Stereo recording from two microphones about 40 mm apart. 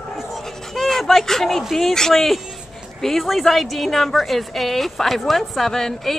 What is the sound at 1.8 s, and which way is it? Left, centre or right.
A woman's voice, centre.